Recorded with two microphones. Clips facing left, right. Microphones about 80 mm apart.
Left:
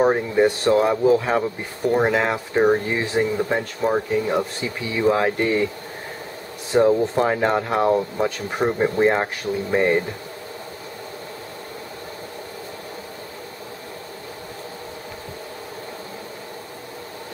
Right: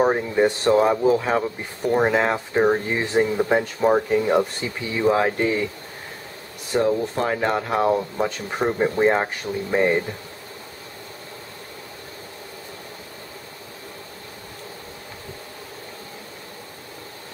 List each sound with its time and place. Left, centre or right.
0.0 s speech: centre
6.7 s speech: centre
7.2 s speech: centre